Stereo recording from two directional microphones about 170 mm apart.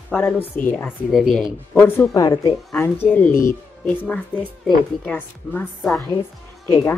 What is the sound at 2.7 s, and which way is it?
A woman's voice, 15° left (ahead or behind).